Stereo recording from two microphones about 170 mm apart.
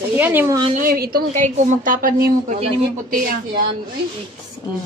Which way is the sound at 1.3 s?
45° right (ahead or behind).